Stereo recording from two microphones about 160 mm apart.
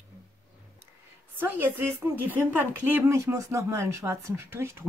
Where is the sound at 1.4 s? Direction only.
15° right (ahead or behind).